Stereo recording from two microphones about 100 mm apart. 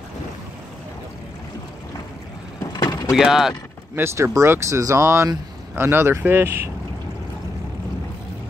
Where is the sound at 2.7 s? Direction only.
40° left (ahead or behind).